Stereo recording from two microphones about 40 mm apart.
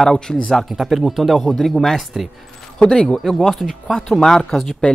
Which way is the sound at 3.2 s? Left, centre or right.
Centre.